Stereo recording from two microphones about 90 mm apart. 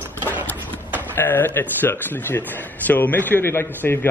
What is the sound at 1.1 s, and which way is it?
A man's voice, 25° left (ahead or behind).